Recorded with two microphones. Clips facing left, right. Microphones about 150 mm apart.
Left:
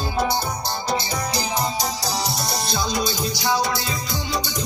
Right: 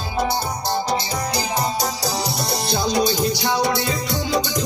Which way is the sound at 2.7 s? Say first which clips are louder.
Right 6 dB; 65° right (ahead or behind).